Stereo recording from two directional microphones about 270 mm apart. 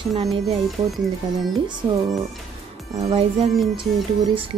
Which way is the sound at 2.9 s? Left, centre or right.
Right.